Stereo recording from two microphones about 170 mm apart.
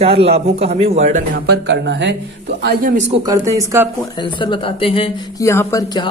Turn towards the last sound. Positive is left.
turn(degrees=20)  # may be behind; listen again after turning